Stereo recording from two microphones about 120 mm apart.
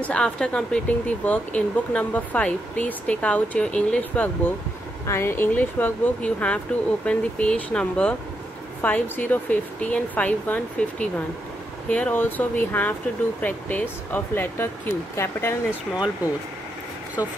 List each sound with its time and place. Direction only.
0.0 s speech: 10° left (ahead or behind)
17.2 s speech: 30° left (ahead or behind)